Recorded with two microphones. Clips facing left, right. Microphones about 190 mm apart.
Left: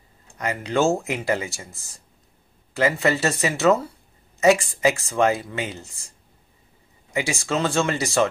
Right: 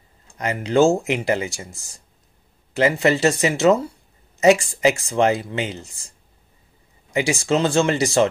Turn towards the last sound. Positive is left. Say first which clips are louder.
# right 4 dB
turn(degrees=-30)  # may be behind; listen again after turning